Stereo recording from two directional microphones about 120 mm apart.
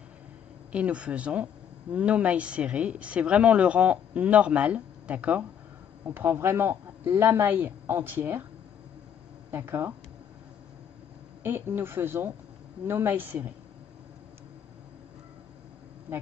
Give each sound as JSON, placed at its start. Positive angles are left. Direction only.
{"t": 0.7, "sound": "a woman's voice", "side_deg": -10}
{"t": 9.5, "sound": "speech", "side_deg": -20}
{"t": 11.4, "sound": "speech", "side_deg": -20}